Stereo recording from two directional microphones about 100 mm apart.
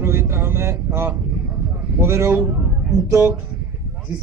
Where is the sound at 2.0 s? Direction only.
25° right (ahead or behind).